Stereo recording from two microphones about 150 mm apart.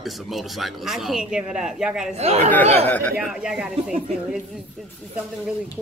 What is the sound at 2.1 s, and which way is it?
Speech, 45° right (ahead or behind).